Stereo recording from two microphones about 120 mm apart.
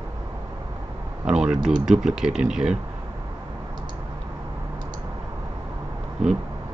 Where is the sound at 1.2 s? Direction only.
5° right (ahead or behind).